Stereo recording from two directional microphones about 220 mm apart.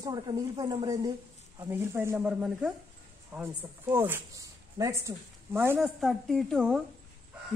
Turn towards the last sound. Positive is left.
turn(degrees=0)  # may be behind; listen again after turning